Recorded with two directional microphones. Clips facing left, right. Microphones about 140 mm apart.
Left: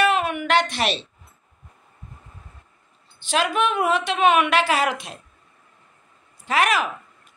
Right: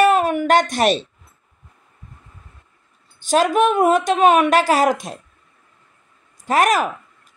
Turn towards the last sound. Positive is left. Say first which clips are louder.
# right 4 dB
turn(degrees=-45)  # may be behind; listen again after turning